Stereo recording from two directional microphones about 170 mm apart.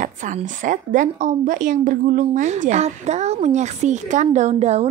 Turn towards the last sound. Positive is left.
turn(degrees=-40)  # may be behind; listen again after turning